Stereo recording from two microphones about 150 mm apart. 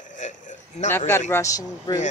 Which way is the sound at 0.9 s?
15° left (ahead or behind).